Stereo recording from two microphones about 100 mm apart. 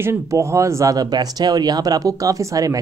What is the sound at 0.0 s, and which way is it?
Speech, 25° right (ahead or behind).